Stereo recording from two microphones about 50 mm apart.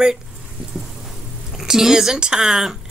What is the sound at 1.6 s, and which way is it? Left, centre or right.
Speech, centre.